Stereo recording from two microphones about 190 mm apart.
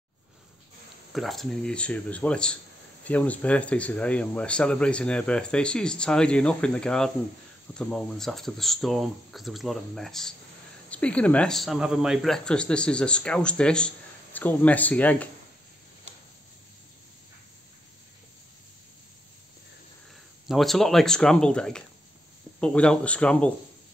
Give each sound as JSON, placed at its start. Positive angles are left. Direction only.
{"t": 1.1, "sound": "speech", "side_deg": 0}
{"t": 20.4, "sound": "speech", "side_deg": 0}